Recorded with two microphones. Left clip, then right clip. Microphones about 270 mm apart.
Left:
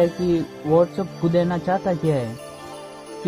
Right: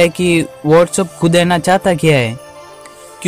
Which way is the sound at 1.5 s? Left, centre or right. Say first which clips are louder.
Right 10 dB; right.